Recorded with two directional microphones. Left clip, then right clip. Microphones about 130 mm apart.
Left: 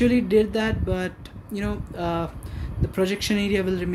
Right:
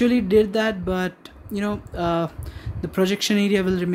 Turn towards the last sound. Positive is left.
turn(degrees=-45)  # may be behind; listen again after turning